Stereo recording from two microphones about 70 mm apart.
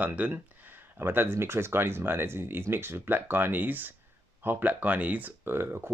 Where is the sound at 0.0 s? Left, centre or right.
Right.